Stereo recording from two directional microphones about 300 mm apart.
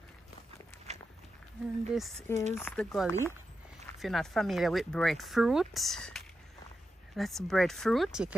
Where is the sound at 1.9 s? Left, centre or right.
Centre.